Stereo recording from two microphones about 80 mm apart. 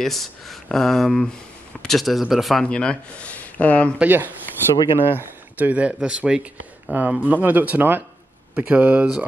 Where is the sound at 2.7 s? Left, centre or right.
Centre.